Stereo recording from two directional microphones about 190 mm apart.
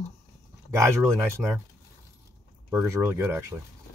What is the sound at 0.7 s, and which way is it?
Speech, 15° right (ahead or behind).